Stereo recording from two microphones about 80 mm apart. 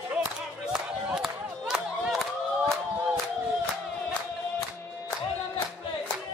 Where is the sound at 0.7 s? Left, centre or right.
Centre.